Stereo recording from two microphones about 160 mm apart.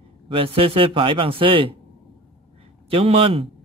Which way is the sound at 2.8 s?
35° right (ahead or behind).